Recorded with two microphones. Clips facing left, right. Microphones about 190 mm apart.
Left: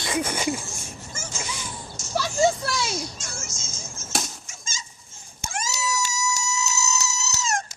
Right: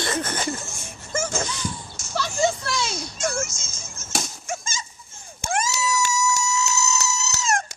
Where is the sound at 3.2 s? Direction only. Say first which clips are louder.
Right 13 dB; 55° right (ahead or behind).